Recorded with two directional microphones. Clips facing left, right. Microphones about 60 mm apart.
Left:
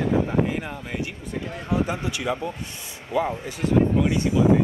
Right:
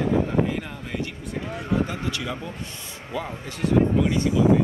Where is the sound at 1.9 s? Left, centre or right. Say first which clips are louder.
Left 3 dB; centre.